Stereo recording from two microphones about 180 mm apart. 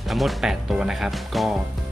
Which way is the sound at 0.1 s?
Centre (ahead or behind).